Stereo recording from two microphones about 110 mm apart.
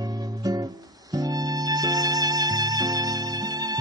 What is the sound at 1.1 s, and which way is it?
Music, 35° right (ahead or behind).